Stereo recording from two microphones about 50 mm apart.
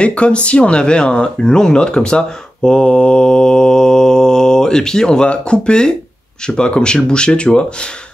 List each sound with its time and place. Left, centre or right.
0.0 s speech: left